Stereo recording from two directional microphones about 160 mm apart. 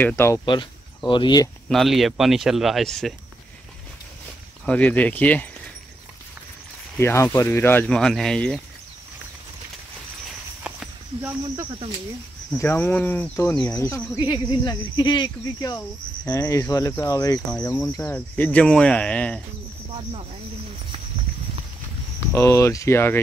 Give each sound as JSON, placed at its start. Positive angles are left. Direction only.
{"t": 0.0, "sound": "speech", "side_deg": 15}
{"t": 0.5, "sound": "speech", "side_deg": 30}
{"t": 1.7, "sound": "speech", "side_deg": 0}
{"t": 4.6, "sound": "speech", "side_deg": 10}
{"t": 7.0, "sound": "speech", "side_deg": 15}
{"t": 7.8, "sound": "speech", "side_deg": 0}
{"t": 10.6, "sound": "a sound", "side_deg": -5}
{"t": 12.5, "sound": "speech", "side_deg": 10}
{"t": 17.5, "sound": "speech", "side_deg": 10}
{"t": 22.3, "sound": "speech", "side_deg": 20}